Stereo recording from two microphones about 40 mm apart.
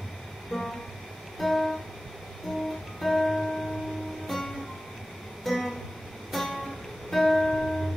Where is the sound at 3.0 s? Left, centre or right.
Centre.